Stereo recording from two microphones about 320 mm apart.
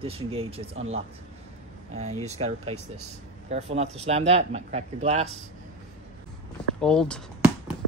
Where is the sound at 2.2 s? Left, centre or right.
Centre.